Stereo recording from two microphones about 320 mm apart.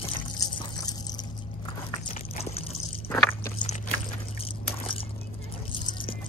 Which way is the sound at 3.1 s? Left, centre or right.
Centre.